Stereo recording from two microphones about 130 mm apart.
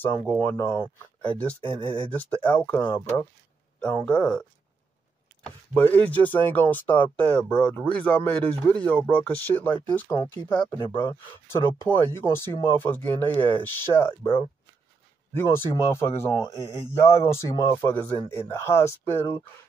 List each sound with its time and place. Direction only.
0.0 s speech: 15° left (ahead or behind)
1.8 s speech: 40° right (ahead or behind)
2.1 s speech: 10° left (ahead or behind)
5.8 s speech: 15° left (ahead or behind)
10.1 s speech: 40° left (ahead or behind)
10.7 s speech: 25° left (ahead or behind)
15.3 s speech: 20° left (ahead or behind)